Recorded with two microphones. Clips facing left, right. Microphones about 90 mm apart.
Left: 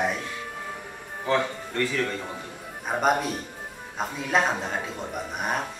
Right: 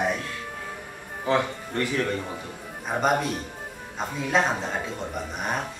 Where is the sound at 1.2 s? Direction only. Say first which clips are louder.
Right 1 dB; 15° right (ahead or behind).